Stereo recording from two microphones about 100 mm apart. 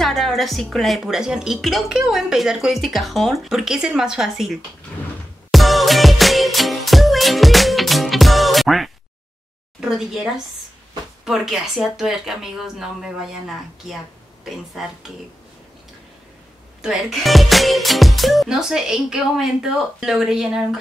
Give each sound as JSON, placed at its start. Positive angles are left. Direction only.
{"t": 0.0, "sound": "a woman's voice", "side_deg": 5}
{"t": 5.5, "sound": "music", "side_deg": 0}
{"t": 9.8, "sound": "a woman's voice", "side_deg": -5}
{"t": 16.8, "sound": "a woman's voice", "side_deg": 0}